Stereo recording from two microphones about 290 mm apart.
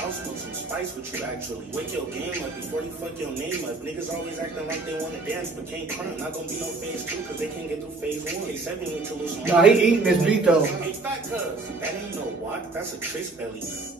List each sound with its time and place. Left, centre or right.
9.2 s speech: centre